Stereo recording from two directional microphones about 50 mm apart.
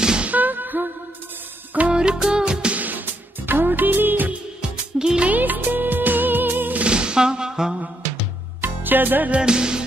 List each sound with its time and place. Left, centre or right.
0.0 s music: centre
0.3 s music: right
1.9 s music: centre
3.4 s music: right
4.6 s music: centre
5.2 s music: right
6.8 s music: centre
8.5 s music: right
9.3 s music: centre